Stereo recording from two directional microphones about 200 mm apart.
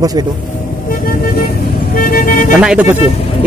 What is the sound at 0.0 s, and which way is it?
Speech, 20° right (ahead or behind).